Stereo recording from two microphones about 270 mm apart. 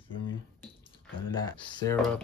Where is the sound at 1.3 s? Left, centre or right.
Centre.